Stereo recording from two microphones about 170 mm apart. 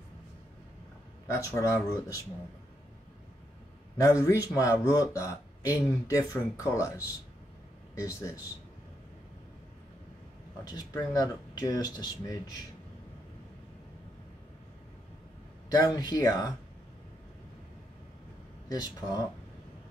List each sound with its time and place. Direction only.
1.5 s speech: 20° left (ahead or behind)
4.0 s speech: 15° left (ahead or behind)
10.7 s speech: 25° left (ahead or behind)
15.7 s speech: 25° left (ahead or behind)
18.7 s speech: 20° left (ahead or behind)